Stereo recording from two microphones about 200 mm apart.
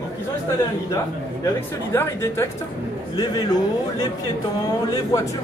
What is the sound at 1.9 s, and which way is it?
A man's voice, 10° left (ahead or behind).